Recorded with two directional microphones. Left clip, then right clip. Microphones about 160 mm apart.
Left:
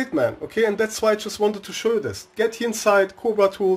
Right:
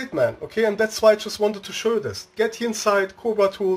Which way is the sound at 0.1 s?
25° left (ahead or behind).